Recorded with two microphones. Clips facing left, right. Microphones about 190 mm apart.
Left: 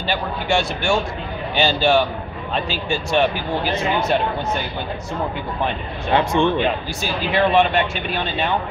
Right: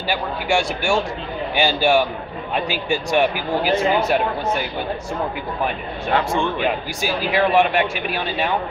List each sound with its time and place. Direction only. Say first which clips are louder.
0.0 s speech: even; 10° right (ahead or behind)
6.1 s speech: left 3 dB; 20° left (ahead or behind)
6.6 s speech: even; 10° right (ahead or behind)